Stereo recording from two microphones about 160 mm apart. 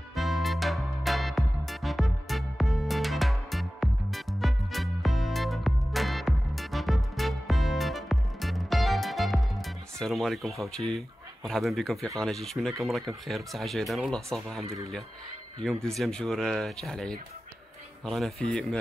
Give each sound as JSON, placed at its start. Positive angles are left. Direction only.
{"t": 0.1, "sound": "music", "side_deg": 0}
{"t": 9.9, "sound": "speech", "side_deg": 5}
{"t": 15.6, "sound": "speech", "side_deg": 5}